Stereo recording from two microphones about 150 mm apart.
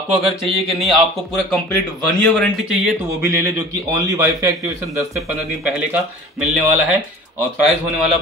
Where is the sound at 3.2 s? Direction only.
20° right (ahead or behind).